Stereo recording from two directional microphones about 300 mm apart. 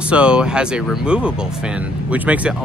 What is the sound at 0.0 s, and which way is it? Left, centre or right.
Speech, centre.